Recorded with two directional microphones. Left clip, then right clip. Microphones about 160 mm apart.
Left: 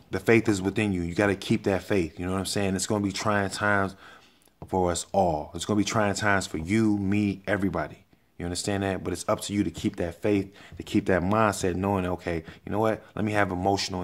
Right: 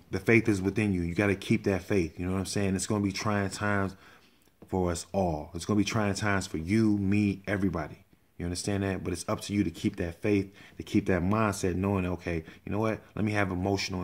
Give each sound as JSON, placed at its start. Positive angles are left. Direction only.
{"t": 0.1, "sound": "speech", "side_deg": -15}